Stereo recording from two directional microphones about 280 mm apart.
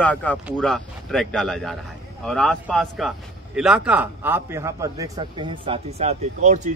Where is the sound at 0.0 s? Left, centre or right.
Centre.